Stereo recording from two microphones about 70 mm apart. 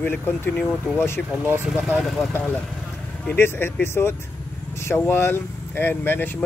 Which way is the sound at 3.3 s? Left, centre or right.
Left.